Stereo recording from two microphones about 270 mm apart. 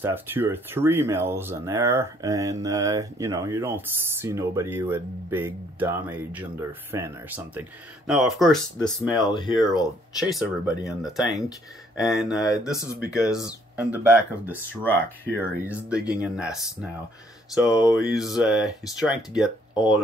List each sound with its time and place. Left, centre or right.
0.0 s speech: centre
9.3 s speech: centre
10.4 s speech: centre
11.2 s speech: centre
12.0 s speech: centre
12.3 s speech: centre
13.0 s speech: centre